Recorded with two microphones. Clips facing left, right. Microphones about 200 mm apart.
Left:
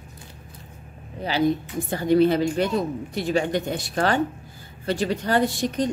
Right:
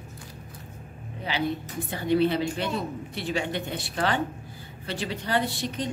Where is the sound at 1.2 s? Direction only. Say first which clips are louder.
Left 7 dB; 40° left (ahead or behind).